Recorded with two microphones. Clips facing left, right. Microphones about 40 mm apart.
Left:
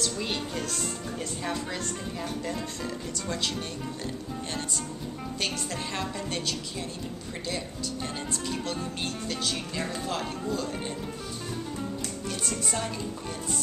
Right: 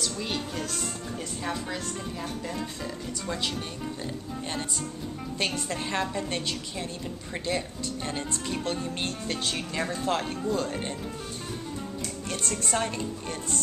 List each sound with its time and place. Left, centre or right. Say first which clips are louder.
0.0 s speech: left 1 dB; centre
5.4 s speech: right 3 dB; right
12.7 s a woman's voice: right 3 dB; right